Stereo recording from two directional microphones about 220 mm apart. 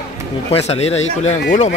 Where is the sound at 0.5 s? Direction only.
30° left (ahead or behind).